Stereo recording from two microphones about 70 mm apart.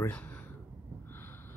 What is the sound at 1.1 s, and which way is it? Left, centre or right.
Snort, left.